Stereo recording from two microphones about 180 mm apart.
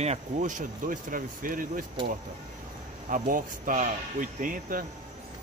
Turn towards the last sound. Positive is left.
turn(degrees=-50)  # may be behind; listen again after turning